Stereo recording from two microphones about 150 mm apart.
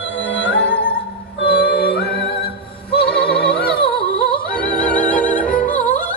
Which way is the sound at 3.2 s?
5° left (ahead or behind).